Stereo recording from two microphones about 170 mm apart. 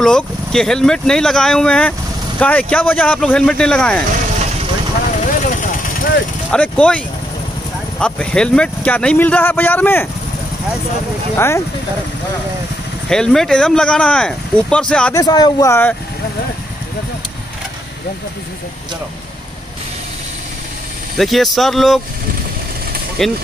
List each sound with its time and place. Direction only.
0.0 s speech: 5° left (ahead or behind)
5.2 s vehicle: 45° left (ahead or behind)
6.5 s speech: 5° left (ahead or behind)
8.0 s speech: 5° left (ahead or behind)
11.3 s speech: 15° left (ahead or behind)
13.1 s speech: 5° left (ahead or behind)
15.1 s speech: 25° left (ahead or behind)
21.2 s speech: centre (ahead or behind)
23.2 s speech: centre (ahead or behind)